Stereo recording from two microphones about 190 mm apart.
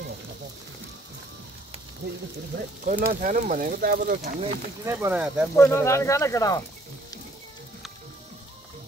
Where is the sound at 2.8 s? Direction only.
45° right (ahead or behind).